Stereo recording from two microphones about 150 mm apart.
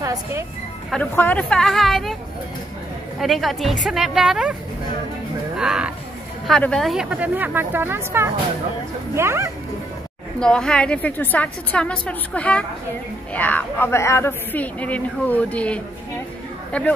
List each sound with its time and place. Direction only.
0.0 s speech: 20° right (ahead or behind)
1.1 s a woman's voice: 10° left (ahead or behind)
3.2 s a woman's voice: centre (ahead or behind)
5.6 s a woman's voice: 5° right (ahead or behind)
10.4 s speech: 5° left (ahead or behind)